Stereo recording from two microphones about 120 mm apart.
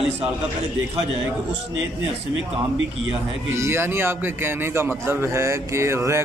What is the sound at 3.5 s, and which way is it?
A man's voice, 20° right (ahead or behind).